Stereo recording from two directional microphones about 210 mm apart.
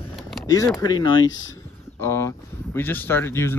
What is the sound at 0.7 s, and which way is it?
Speech, 15° left (ahead or behind).